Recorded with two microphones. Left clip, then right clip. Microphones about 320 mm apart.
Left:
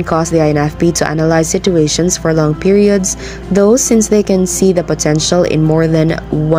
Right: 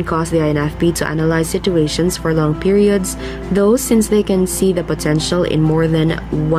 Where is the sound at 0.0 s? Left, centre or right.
Centre.